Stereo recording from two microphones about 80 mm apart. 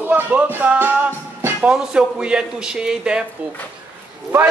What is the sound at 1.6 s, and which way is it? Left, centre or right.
Speech, centre.